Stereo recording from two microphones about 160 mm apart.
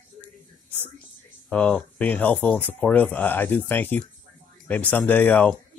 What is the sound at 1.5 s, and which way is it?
Speech, 5° left (ahead or behind).